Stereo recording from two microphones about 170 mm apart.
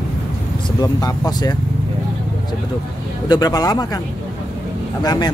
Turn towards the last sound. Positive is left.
turn(degrees=25)  # may be behind; listen again after turning